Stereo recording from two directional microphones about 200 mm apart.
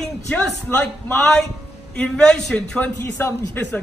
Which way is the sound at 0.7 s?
10° left (ahead or behind).